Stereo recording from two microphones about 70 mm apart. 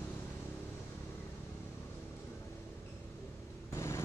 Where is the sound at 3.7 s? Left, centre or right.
Left.